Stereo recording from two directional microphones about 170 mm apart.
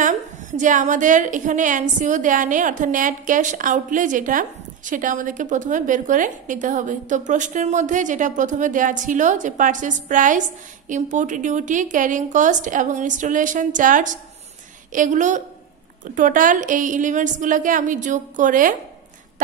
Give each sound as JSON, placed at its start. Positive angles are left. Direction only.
{"t": 0.0, "sound": "a woman's voice", "side_deg": -45}